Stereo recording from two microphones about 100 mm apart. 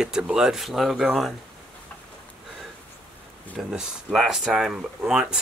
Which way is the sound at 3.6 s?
5° right (ahead or behind).